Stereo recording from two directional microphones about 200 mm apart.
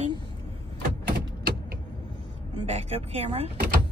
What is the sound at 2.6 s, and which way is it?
Speech, 30° right (ahead or behind).